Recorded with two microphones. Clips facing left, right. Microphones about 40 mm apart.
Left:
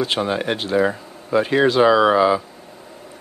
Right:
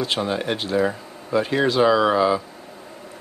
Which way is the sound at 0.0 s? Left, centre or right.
Centre.